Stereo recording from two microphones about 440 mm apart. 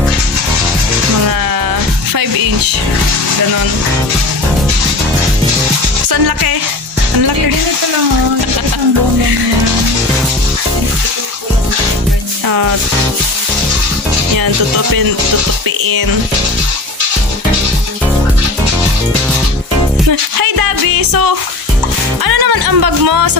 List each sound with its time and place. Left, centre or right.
2.1 s music: right
6.0 s music: right
12.4 s music: right
14.3 s music: right
20.1 s music: right